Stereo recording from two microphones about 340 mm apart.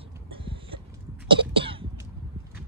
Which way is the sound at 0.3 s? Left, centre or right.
Centre.